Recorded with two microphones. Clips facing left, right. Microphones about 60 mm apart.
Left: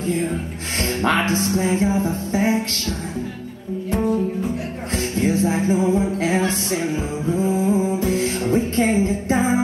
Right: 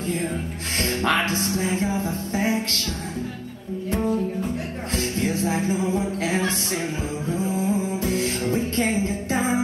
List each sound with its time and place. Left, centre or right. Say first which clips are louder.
0.2 s speech: left 3 dB; centre
3.9 s music: left 3 dB; centre
7.3 s music: left 5 dB; centre